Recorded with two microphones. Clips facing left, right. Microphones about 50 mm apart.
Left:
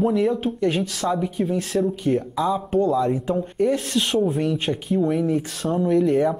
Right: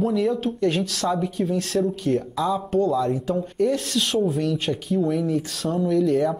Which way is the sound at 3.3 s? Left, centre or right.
Centre.